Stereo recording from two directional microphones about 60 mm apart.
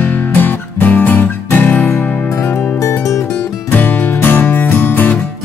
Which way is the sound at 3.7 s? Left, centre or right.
Left.